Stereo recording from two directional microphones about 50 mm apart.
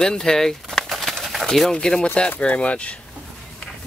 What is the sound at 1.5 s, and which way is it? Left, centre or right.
Speech, centre.